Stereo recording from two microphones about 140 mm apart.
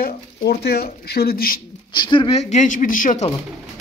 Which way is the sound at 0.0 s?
90° left.